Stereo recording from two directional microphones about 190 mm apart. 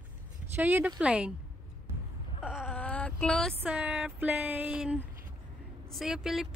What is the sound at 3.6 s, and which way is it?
Speech, 10° right (ahead or behind).